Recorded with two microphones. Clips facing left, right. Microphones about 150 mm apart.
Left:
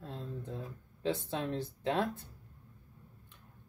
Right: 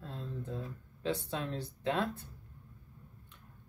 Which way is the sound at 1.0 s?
20° left (ahead or behind).